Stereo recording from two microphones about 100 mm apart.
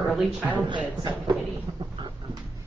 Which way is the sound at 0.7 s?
50° right (ahead or behind).